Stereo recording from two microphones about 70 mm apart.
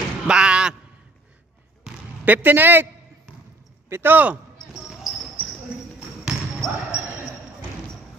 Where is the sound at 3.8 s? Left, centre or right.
Right.